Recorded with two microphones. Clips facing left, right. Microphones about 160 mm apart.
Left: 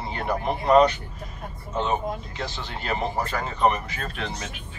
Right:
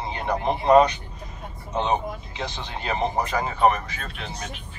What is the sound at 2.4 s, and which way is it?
Speech, 20° right (ahead or behind).